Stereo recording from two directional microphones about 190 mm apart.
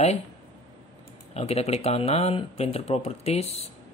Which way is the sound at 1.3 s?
35° left (ahead or behind).